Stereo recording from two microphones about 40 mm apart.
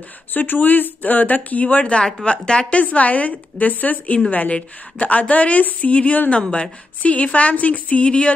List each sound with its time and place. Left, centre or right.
0.3 s speech: left
2.2 s speech: left
2.7 s a woman's voice: left
6.4 s speech: left
7.0 s a woman's voice: left